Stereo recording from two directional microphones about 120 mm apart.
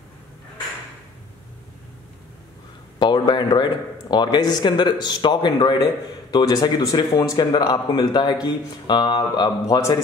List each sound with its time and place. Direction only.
3.0 s speech: 40° left (ahead or behind)